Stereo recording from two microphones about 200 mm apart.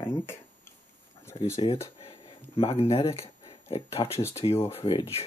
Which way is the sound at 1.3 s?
25° left (ahead or behind).